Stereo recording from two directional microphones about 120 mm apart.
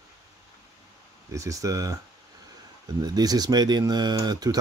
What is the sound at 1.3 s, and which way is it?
Speech, 25° right (ahead or behind).